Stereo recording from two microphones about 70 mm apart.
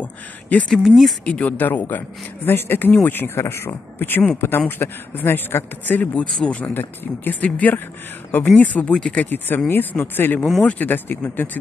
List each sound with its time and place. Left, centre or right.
0.0 s speech: centre
0.7 s speech: centre
1.2 s speech: centre
6.2 s speech: centre
6.7 s speech: left
8.9 s speech: centre
9.2 s speech: left
10.4 s speech: centre
10.7 s speech: left